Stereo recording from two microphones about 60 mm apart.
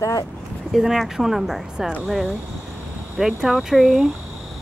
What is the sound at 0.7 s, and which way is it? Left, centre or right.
Speech, centre.